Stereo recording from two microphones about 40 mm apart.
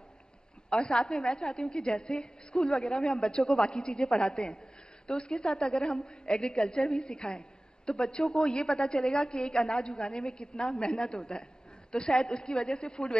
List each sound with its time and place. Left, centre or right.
0.7 s a woman's voice: left